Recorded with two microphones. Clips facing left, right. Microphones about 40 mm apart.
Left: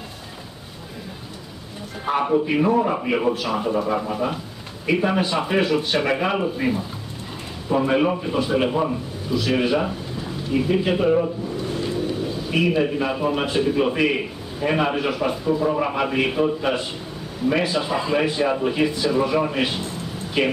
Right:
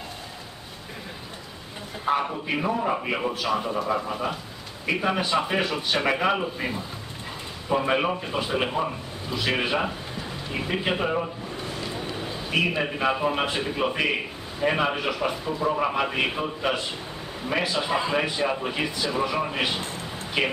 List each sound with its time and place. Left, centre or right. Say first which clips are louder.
2.0 s a sound: left 2 dB; centre
2.6 s a man's voice: left 6 dB; centre
7.7 s speech: left 4 dB; centre
9.3 s a man's voice: left 5 dB; centre